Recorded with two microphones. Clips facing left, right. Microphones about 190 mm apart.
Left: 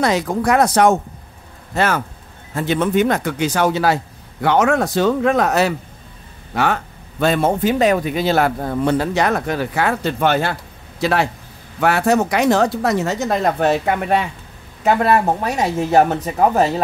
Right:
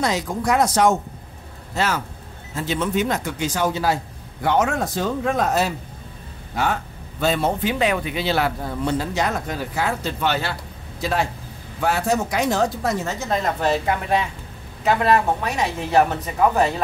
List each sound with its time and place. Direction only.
0.0 s a man's voice: 65° left (ahead or behind)
11.0 s a man's voice: 70° left (ahead or behind)
14.9 s a man's voice: 40° left (ahead or behind)